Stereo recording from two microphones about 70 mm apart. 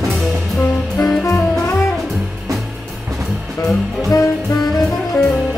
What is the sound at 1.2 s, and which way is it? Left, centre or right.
Jazz, left.